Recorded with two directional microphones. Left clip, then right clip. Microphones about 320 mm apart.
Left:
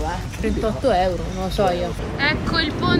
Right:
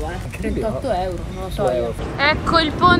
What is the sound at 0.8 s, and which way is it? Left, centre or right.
Speech, left.